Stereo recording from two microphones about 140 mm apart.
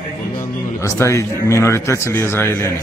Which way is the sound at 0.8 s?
20° left (ahead or behind).